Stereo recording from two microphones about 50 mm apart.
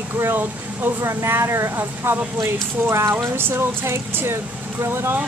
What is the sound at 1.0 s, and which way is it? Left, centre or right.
Speech, right.